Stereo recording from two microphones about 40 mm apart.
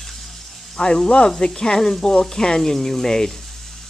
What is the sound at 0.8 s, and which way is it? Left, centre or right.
Speech, centre.